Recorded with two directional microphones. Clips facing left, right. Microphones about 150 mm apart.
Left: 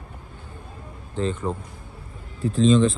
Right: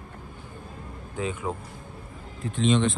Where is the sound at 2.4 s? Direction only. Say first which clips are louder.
Left 6 dB; 35° left (ahead or behind).